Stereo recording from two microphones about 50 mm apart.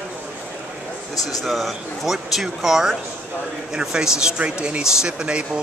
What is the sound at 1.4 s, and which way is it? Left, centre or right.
Speech, centre.